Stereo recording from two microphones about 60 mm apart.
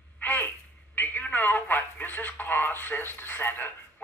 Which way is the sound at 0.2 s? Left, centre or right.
Left.